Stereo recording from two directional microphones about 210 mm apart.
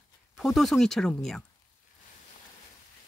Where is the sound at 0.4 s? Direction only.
Centre (ahead or behind).